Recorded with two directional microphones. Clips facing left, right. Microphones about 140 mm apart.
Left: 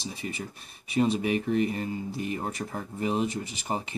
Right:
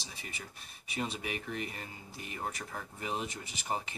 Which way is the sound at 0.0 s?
25° left (ahead or behind).